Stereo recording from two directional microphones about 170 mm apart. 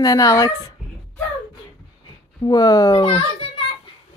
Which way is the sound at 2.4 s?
20° left (ahead or behind).